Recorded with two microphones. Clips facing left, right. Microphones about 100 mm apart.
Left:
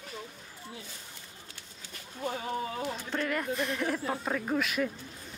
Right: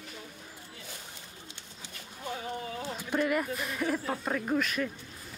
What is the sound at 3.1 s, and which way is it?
Speech, 10° right (ahead or behind).